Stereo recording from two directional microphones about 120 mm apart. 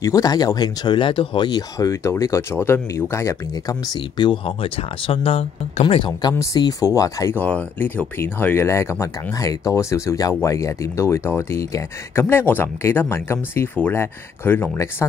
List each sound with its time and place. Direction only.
0.0 s speech: 30° left (ahead or behind)
6.3 s speech: 25° left (ahead or behind)
7.3 s speech: 15° left (ahead or behind)